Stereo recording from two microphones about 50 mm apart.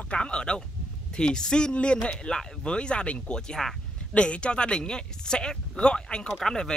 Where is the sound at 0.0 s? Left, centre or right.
Left.